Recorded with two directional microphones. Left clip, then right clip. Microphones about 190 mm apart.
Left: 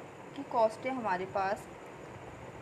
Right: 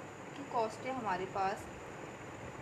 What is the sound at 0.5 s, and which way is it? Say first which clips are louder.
Speech: left 7 dB; 50° left (ahead or behind).